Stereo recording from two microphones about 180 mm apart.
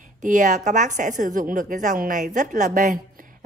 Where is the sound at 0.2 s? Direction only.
45° right (ahead or behind).